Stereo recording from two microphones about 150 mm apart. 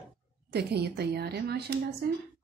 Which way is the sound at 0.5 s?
90° right.